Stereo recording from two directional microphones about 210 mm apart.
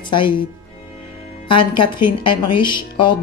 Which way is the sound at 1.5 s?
20° left (ahead or behind).